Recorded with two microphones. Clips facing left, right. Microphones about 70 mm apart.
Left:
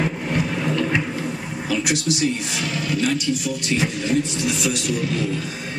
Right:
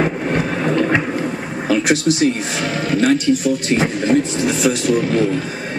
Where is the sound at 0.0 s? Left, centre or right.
Right.